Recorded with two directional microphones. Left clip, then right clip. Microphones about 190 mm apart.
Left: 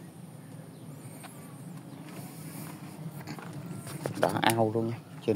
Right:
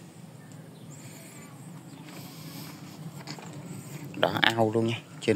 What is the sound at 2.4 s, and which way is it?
Vehicle, 25° left (ahead or behind).